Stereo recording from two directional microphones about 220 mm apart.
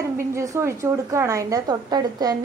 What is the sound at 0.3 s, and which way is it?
A woman's voice, 15° right (ahead or behind).